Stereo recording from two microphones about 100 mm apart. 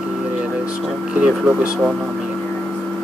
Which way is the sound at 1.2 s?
15° right (ahead or behind).